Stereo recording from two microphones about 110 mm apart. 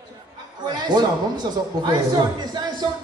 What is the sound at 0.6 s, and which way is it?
A man's voice, 40° right (ahead or behind).